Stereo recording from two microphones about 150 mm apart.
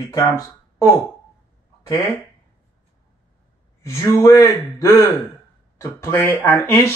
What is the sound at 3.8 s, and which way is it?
A man's voice, 20° left (ahead or behind).